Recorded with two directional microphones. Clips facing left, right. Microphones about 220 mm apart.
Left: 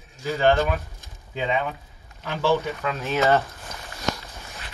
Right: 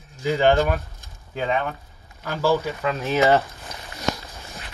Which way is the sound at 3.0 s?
15° right (ahead or behind).